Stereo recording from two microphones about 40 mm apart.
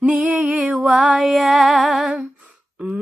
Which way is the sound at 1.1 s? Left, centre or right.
Centre.